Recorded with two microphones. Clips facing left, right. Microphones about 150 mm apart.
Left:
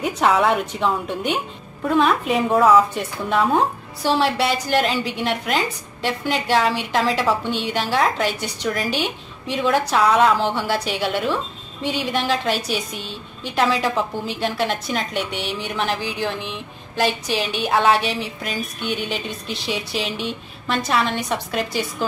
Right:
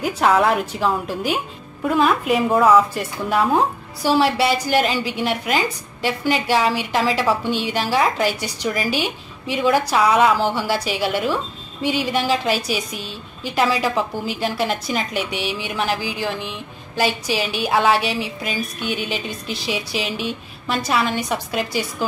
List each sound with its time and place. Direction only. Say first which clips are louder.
0.0 s a woman's voice: right 1 dB; centre (ahead or behind)